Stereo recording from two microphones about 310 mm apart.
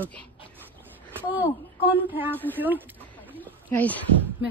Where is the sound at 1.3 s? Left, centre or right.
Centre.